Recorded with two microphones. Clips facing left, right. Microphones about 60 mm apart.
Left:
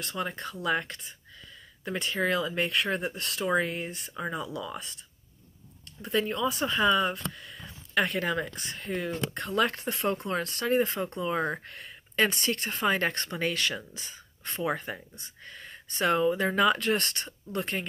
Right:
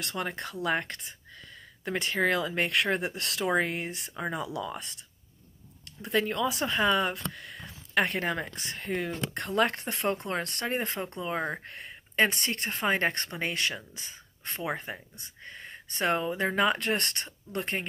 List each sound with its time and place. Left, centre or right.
0.1 s speech: right
3.5 s speech: right
6.1 s speech: right
6.6 s speech: right
11.1 s speech: centre
11.6 s speech: right